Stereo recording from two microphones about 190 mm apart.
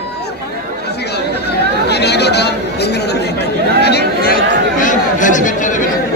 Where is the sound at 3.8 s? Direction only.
55° left (ahead or behind).